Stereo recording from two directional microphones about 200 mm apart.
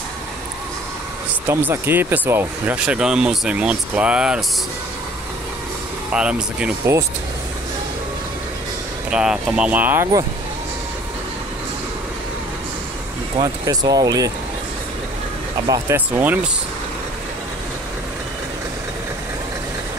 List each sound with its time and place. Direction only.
1.5 s speech: 10° right (ahead or behind)
6.1 s speech: 5° right (ahead or behind)
9.1 s speech: 5° right (ahead or behind)
13.4 s speech: 20° right (ahead or behind)
15.7 s speech: 10° right (ahead or behind)